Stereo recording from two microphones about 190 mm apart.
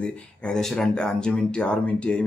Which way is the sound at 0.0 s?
5° left (ahead or behind).